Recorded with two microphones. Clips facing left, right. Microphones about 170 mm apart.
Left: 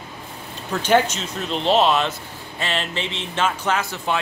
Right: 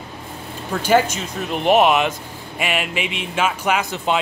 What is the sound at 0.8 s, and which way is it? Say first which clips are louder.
Speech: right 1 dB; 10° right (ahead or behind).